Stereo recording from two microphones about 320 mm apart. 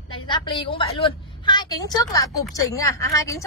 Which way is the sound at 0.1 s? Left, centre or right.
Centre.